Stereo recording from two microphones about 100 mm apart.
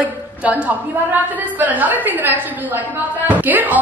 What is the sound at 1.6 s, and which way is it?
A woman's voice, 15° right (ahead or behind).